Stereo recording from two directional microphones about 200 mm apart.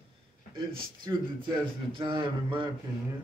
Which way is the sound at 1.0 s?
20° right (ahead or behind).